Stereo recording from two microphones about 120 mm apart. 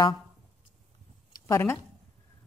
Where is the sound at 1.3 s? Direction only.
20° left (ahead or behind).